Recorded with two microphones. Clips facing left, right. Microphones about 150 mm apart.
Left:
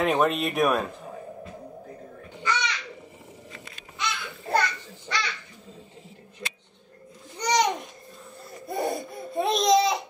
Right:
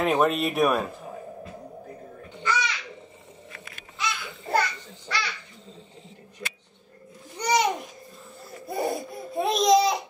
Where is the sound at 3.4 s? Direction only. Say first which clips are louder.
Left 1 dB; 20° left (ahead or behind).